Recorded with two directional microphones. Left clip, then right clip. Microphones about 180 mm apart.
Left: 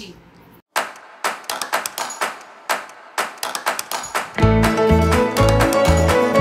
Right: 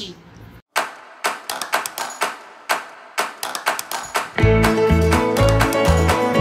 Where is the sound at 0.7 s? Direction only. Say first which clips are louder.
Even; centre (ahead or behind).